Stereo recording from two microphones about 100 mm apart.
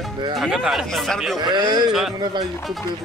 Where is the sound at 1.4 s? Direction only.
45° right (ahead or behind).